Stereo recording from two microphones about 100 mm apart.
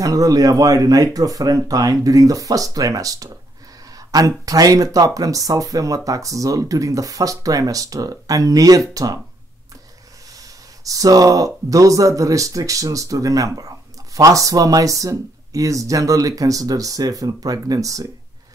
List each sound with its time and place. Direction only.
0.0 s speech: 35° right (ahead or behind)
10.8 s speech: 35° right (ahead or behind)